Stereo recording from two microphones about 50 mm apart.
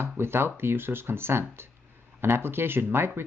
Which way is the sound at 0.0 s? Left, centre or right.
Right.